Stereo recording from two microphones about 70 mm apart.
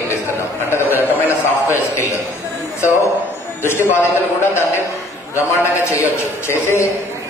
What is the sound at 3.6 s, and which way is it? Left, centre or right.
Speech, left.